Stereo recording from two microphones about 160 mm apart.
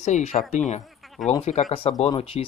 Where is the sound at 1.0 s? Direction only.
Centre (ahead or behind).